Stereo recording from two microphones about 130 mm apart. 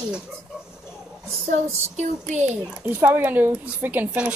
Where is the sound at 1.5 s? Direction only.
65° right (ahead or behind).